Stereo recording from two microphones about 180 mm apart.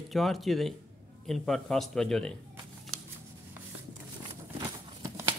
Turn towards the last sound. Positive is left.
turn(degrees=-15)  # may be behind; listen again after turning